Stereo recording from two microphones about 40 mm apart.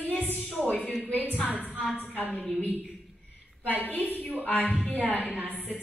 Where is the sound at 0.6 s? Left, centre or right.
Left.